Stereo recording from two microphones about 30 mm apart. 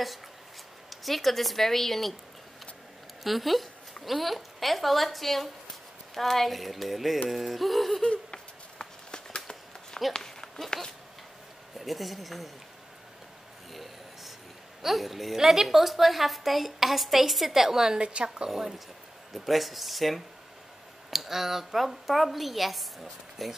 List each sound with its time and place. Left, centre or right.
0.8 s a woman's voice: centre
3.3 s a woman's voice: centre
8.0 s a sound: left
10.2 s run: left
11.8 s a woman's voice: centre
14.8 s a woman's voice: centre
15.3 s speech: centre
15.6 s a woman's voice: centre
17.9 s a woman's voice: right
18.5 s a woman's voice: centre